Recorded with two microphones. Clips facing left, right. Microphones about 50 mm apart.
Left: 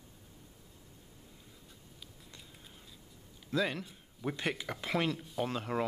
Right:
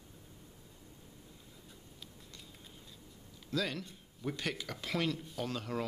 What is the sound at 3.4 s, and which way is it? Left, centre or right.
A man's voice, left.